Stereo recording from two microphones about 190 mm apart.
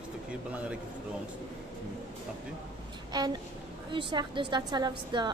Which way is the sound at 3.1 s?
20° right (ahead or behind).